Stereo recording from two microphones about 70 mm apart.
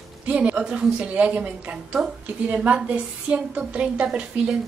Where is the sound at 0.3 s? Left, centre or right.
Centre.